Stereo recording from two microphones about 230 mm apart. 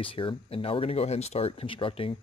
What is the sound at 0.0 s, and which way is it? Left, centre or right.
Speech, left.